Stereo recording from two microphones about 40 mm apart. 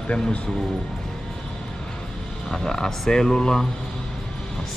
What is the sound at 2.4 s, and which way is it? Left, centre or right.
Speech, centre.